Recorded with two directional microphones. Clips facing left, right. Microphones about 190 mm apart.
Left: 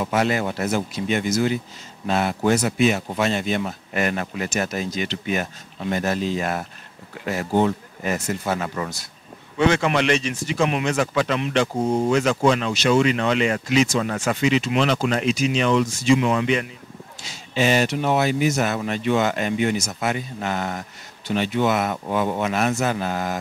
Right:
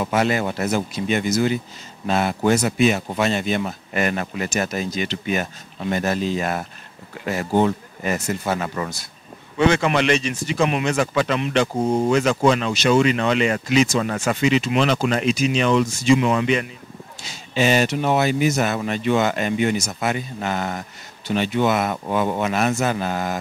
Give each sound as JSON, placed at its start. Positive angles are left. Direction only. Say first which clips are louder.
{"t": 0.1, "sound": "speech", "louder": "right 1 dB", "side_deg": -15}
{"t": 8.0, "sound": "speech", "louder": "right 1 dB", "side_deg": -15}